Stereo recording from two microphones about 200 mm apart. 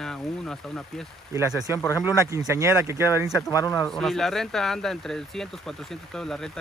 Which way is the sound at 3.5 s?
15° left (ahead or behind).